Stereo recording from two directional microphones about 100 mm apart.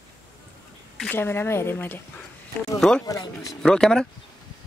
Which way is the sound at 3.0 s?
35° left (ahead or behind).